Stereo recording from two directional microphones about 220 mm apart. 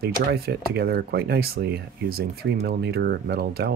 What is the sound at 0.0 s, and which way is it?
Speech, 45° right (ahead or behind).